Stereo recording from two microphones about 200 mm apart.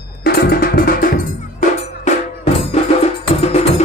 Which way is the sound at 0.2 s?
50° left (ahead or behind).